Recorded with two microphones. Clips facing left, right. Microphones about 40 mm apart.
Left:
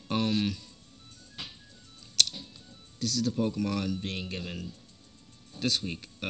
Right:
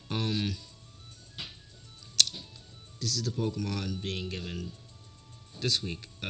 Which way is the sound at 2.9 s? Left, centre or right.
Left.